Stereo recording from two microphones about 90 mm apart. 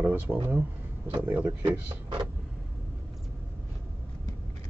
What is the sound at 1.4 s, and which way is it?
Speech, 60° right (ahead or behind).